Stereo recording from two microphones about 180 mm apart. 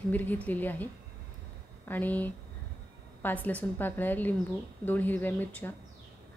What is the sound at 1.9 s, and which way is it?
A woman's voice, 10° left (ahead or behind).